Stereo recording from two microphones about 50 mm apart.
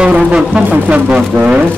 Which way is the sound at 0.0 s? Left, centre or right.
Centre.